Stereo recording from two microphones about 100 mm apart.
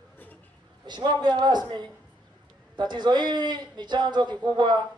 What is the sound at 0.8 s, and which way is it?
Speech, 45° right (ahead or behind).